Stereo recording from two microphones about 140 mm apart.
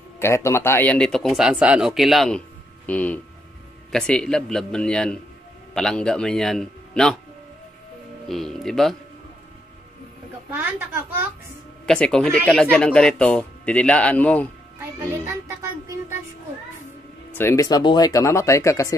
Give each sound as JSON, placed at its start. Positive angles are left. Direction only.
{"t": 0.2, "sound": "speech", "side_deg": 20}
{"t": 2.9, "sound": "speech", "side_deg": 10}
{"t": 8.3, "sound": "speech", "side_deg": 5}
{"t": 10.5, "sound": "speech", "side_deg": -15}
{"t": 11.8, "sound": "speech", "side_deg": 5}
{"t": 17.3, "sound": "speech", "side_deg": 15}